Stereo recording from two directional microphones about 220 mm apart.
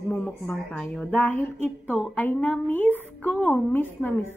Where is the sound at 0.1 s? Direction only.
5° left (ahead or behind).